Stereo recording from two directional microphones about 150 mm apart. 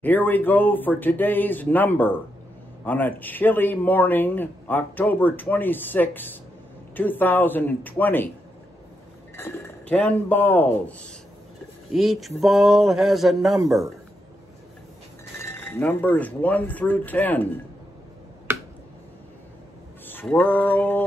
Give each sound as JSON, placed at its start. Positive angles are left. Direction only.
{"t": 0.0, "sound": "a man's voice", "side_deg": 10}
{"t": 9.4, "sound": "a man's voice", "side_deg": 10}
{"t": 11.9, "sound": "a sound", "side_deg": 0}
{"t": 15.4, "sound": "a man's voice", "side_deg": 15}
{"t": 18.5, "sound": "finger snapping", "side_deg": -15}
{"t": 20.1, "sound": "mantra", "side_deg": 10}